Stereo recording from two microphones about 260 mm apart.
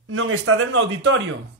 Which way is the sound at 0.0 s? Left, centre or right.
Right.